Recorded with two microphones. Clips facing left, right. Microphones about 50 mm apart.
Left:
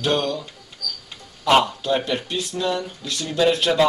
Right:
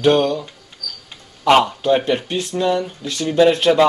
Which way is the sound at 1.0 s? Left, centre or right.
Right.